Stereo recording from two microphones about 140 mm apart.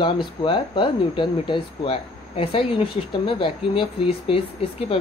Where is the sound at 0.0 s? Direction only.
35° left (ahead or behind).